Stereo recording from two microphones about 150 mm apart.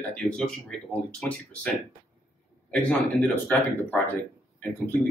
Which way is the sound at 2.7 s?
10° left (ahead or behind).